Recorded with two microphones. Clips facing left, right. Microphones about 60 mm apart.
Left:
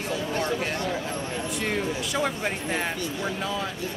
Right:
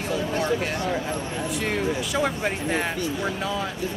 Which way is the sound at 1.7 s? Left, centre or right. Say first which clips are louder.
Right 3 dB; centre.